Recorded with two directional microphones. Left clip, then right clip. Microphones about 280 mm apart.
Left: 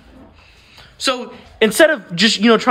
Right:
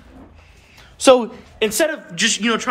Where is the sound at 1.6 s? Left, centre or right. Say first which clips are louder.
Left 7 dB; left.